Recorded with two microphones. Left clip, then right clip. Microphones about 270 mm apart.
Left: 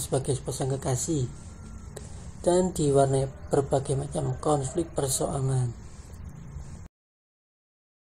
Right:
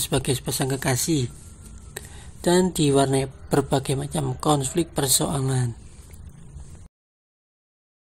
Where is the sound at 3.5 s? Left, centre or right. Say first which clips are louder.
Right 2 dB; right.